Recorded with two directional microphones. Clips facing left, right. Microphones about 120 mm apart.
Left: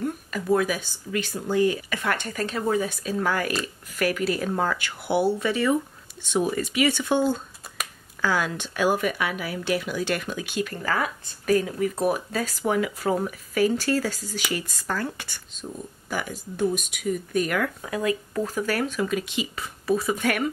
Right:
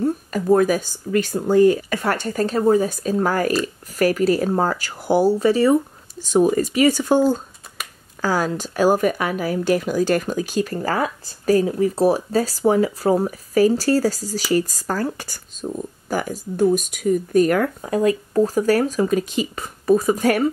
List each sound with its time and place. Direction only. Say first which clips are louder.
0.0 s speech: right 8 dB; 40° right (ahead or behind)